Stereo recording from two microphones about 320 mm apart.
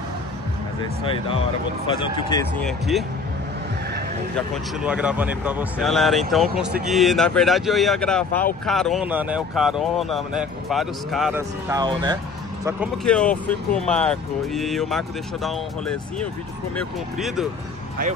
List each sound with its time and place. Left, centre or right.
1.9 s speech: centre
4.4 s speech: centre
12.6 s speech: centre